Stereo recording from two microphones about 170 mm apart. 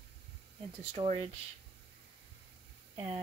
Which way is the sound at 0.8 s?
40° right (ahead or behind).